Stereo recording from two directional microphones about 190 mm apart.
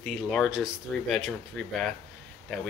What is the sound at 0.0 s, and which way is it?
Speech, centre (ahead or behind).